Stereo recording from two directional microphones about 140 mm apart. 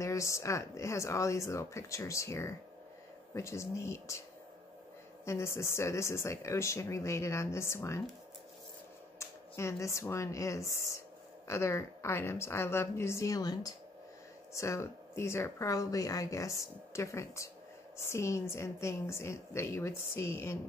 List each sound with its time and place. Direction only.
0.0 s speech: 20° left (ahead or behind)
5.2 s speech: 20° left (ahead or behind)
9.2 s speech: 20° left (ahead or behind)